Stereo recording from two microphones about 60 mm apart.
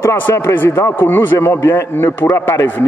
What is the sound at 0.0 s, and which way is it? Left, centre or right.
A man's voice, left.